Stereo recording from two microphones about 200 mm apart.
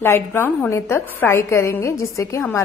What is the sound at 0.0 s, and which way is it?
A woman's voice, 10° left (ahead or behind).